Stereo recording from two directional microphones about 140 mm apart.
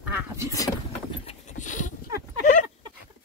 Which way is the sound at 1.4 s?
65° left (ahead or behind).